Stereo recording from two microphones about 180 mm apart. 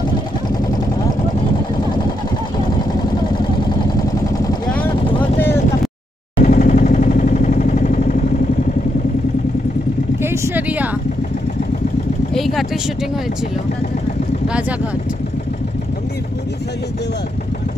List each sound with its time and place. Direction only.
6.4 s vehicle: 45° left (ahead or behind)
10.2 s vehicle: 15° right (ahead or behind)
12.4 s vehicle: centre (ahead or behind)